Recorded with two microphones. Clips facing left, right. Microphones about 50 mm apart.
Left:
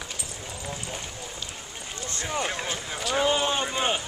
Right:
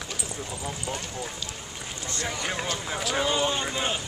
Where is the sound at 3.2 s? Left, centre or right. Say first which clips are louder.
Left 3 dB; centre.